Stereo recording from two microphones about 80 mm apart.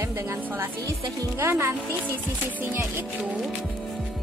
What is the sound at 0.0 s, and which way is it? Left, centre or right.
A woman's voice, right.